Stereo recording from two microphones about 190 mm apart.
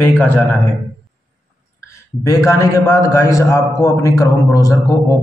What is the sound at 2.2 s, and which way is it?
A man's voice, 15° left (ahead or behind).